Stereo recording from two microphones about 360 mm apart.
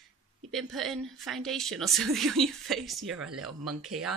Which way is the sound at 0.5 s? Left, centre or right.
Centre.